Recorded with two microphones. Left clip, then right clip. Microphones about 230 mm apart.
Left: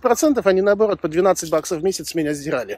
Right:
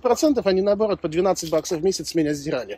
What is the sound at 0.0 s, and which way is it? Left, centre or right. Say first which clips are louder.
Speech: left 3 dB; centre.